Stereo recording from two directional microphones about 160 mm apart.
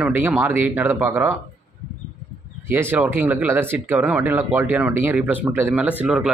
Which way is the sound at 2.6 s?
15° right (ahead or behind).